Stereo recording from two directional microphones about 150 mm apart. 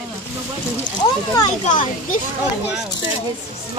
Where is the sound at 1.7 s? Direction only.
60° left (ahead or behind).